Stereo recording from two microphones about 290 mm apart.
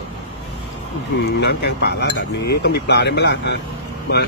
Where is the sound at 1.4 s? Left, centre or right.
Left.